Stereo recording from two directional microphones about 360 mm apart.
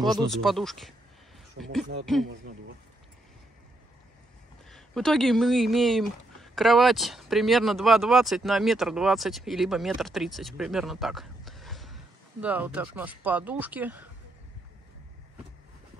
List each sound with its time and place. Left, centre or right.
0.3 s speech: centre
4.6 s speech: centre